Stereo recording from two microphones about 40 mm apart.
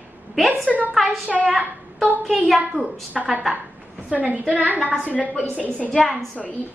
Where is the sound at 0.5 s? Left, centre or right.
Right.